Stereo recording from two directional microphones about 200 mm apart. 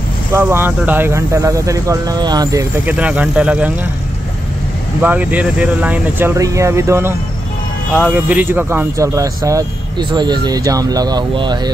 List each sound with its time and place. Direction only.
0.3 s speech: 10° right (ahead or behind)
2.8 s speech: 5° right (ahead or behind)
5.0 s speech: 10° right (ahead or behind)